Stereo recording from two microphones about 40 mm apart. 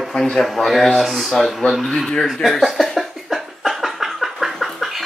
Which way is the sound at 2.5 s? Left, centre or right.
Centre.